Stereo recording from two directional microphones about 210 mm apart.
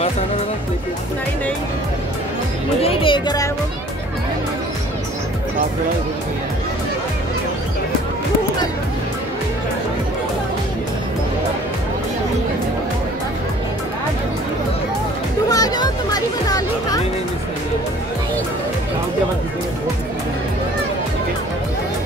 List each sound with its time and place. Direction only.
2.8 s speech: 25° left (ahead or behind)
15.5 s music: 20° left (ahead or behind)